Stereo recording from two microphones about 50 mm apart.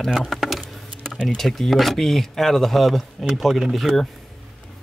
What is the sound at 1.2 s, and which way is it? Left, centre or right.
Speech, centre.